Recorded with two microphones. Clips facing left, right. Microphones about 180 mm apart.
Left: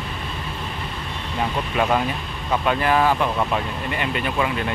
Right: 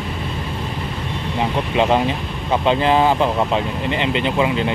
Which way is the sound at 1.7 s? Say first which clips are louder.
Right 4 dB; 25° right (ahead or behind).